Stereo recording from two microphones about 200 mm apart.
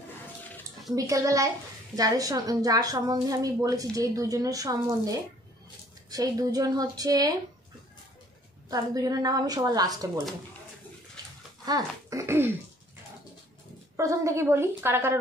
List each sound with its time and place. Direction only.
0.9 s a woman's voice: 15° right (ahead or behind)
8.6 s a woman's voice: 20° right (ahead or behind)
11.6 s speech: 20° right (ahead or behind)
13.9 s a woman's voice: 15° right (ahead or behind)